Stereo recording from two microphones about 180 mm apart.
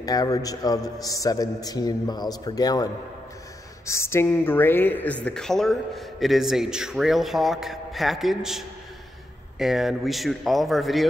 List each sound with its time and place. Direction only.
0.0 s a man's voice: 20° left (ahead or behind); by 11.1 s centre (ahead or behind)